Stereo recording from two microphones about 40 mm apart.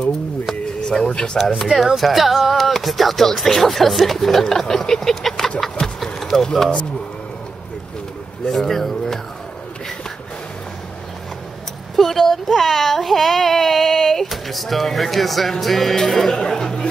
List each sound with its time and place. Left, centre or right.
0.7 s speech: left
1.6 s speech: centre
8.5 s a sound: centre
11.9 s speech: centre